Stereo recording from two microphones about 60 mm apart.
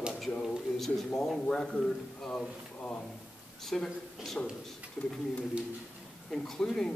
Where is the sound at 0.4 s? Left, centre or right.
Centre.